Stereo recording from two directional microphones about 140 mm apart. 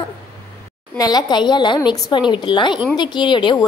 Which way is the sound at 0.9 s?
30° left (ahead or behind).